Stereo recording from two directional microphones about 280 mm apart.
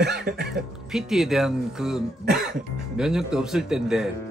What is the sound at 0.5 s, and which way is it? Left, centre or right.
Speech, centre.